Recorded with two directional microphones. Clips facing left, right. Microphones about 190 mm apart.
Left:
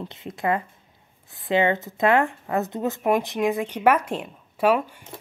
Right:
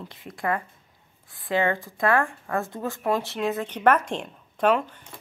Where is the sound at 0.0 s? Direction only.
25° left (ahead or behind).